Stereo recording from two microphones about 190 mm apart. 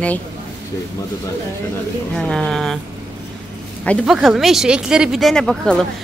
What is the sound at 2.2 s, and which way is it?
Speech, 5° left (ahead or behind).